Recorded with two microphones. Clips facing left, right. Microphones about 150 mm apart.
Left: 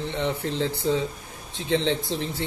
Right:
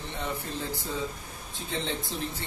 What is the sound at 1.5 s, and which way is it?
Speech, 90° left.